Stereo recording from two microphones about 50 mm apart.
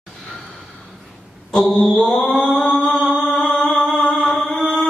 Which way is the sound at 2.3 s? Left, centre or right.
Centre.